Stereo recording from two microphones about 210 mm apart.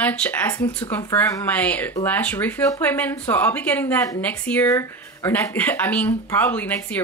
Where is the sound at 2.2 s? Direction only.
5° left (ahead or behind).